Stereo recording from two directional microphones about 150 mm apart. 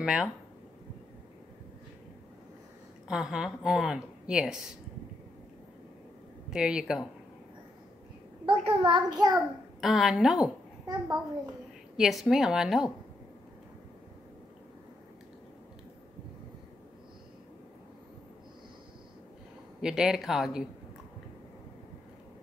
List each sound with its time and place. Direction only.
0.0 s speech: 5° right (ahead or behind)
3.1 s a woman's voice: 5° right (ahead or behind)
6.5 s a woman's voice: 5° right (ahead or behind)
8.5 s a child's voice: 35° right (ahead or behind)
9.8 s a woman's voice: centre (ahead or behind)
12.0 s a woman's voice: centre (ahead or behind)
19.8 s a woman's voice: 5° right (ahead or behind)